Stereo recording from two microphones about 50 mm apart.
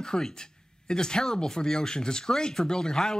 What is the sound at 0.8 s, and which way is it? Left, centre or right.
Speech, centre.